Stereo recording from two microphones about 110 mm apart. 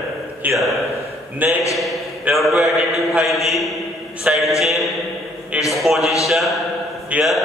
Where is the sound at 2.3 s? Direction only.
Centre (ahead or behind).